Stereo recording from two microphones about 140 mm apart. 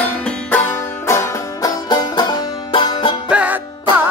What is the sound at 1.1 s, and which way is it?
Music, 25° left (ahead or behind).